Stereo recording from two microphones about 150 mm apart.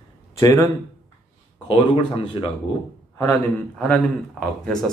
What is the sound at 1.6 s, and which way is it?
Speech, 30° left (ahead or behind).